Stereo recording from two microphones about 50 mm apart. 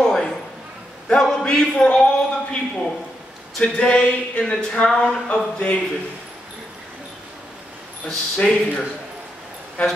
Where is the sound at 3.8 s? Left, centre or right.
Centre.